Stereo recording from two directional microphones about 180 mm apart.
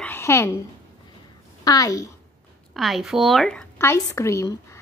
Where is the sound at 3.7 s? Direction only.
15° left (ahead or behind).